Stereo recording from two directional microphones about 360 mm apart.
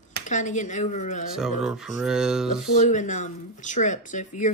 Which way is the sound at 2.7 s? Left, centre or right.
Centre.